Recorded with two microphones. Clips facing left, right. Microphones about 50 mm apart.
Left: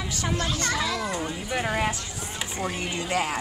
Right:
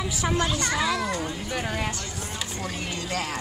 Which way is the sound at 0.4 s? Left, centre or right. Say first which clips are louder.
Right 1 dB; centre.